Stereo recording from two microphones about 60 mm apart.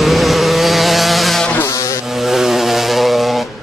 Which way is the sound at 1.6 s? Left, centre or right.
Left.